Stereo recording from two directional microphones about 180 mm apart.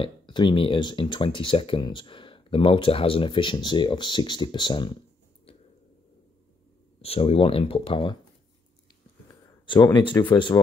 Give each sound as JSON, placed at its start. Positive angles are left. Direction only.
{"t": 0.0, "sound": "speech", "side_deg": 25}
{"t": 5.5, "sound": "a sound", "side_deg": 30}
{"t": 7.0, "sound": "speech", "side_deg": 35}
{"t": 9.9, "sound": "speech", "side_deg": 25}